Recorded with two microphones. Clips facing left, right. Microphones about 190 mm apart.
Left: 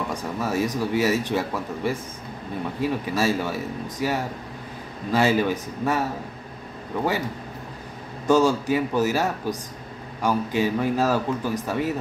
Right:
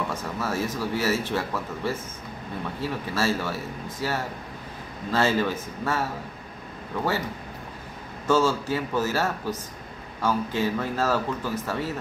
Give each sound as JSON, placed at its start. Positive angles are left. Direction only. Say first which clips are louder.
{"t": 0.1, "sound": "speech", "louder": "left 3 dB", "side_deg": 15}
{"t": 8.3, "sound": "speech", "louder": "left 3 dB", "side_deg": 15}